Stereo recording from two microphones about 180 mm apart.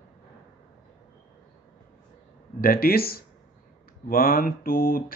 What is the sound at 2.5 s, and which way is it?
Speech, 55° left (ahead or behind).